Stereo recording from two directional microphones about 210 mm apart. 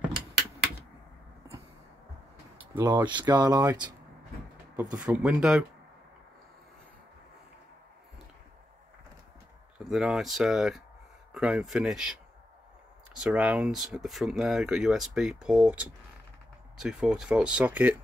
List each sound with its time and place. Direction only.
2.7 s speech: 20° right (ahead or behind)
5.0 s speech: 5° right (ahead or behind)
9.8 s speech: centre (ahead or behind)